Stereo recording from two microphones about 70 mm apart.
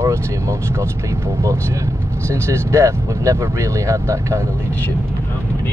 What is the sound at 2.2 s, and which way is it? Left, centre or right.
Speech, right.